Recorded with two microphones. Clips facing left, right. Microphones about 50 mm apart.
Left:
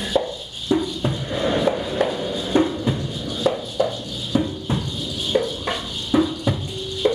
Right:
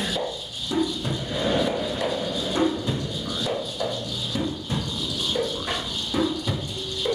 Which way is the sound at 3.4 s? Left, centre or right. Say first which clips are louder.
Left 8 dB; left.